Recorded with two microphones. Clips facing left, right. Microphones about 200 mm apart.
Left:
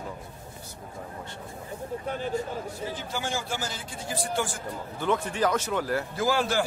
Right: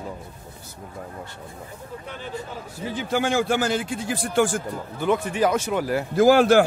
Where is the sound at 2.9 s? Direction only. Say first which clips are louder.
Right 14 dB; 60° right (ahead or behind).